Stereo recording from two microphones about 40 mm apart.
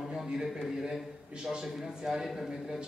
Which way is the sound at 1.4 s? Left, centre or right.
Centre.